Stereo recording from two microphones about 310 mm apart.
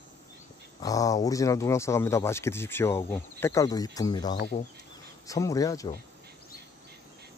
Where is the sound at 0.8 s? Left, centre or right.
Centre.